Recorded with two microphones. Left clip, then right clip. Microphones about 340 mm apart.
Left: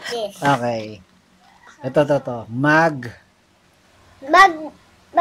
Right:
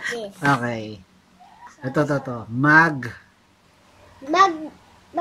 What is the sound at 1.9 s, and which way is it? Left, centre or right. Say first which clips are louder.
Speech: left 6 dB; centre.